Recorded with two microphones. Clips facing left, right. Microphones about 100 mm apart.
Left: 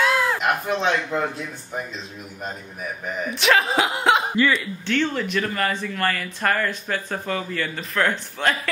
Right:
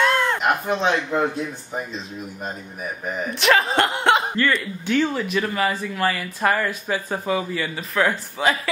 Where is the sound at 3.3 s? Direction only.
Centre (ahead or behind).